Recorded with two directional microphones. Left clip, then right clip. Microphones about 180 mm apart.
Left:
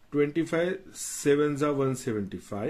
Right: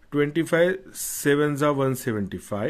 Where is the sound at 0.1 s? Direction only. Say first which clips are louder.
Right 4 dB; 50° right (ahead or behind).